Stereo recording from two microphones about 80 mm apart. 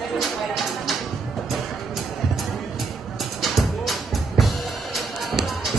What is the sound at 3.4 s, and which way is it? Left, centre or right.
Music, centre.